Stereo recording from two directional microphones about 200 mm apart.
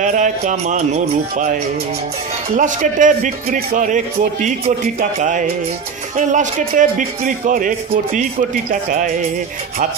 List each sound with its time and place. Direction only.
0.0 s a man's voice: 40° right (ahead or behind)